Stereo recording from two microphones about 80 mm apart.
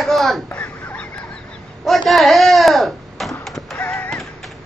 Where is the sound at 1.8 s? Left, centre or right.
Centre.